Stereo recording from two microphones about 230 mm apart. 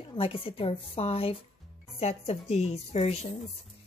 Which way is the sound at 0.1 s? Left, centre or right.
Left.